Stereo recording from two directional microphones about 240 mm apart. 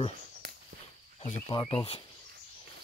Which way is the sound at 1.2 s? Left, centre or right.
Left.